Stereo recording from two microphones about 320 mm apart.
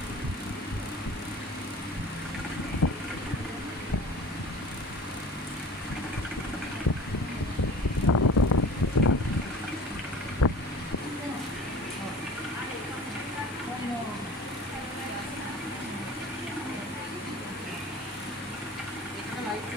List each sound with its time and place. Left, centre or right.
2.8 s vehicle: left
8.1 s vehicle: left
10.4 s boat: left